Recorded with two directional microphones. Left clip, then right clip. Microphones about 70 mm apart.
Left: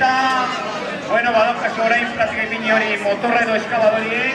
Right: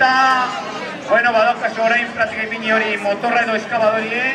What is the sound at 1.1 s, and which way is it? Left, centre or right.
Speech, right.